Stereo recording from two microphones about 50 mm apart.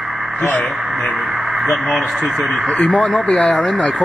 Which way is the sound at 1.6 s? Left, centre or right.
Centre.